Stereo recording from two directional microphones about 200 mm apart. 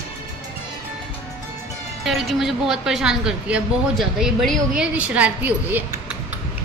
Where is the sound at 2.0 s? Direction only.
Centre (ahead or behind).